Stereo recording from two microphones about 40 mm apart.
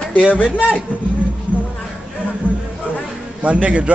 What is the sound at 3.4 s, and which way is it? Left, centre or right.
Speech, right.